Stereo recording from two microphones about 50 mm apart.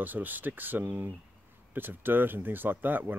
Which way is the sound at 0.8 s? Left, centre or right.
Right.